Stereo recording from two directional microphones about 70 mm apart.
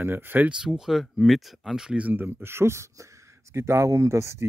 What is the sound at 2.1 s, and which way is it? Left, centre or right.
Speech, right.